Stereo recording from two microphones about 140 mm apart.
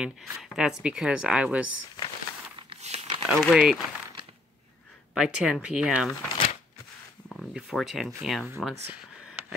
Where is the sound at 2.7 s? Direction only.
50° right (ahead or behind).